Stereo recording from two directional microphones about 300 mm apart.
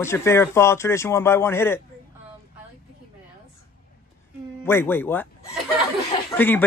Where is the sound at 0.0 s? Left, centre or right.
Centre.